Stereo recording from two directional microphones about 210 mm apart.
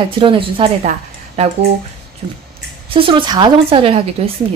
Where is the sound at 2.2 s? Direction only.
20° right (ahead or behind).